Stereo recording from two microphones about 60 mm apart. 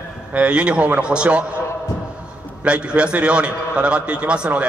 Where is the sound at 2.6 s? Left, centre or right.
Centre.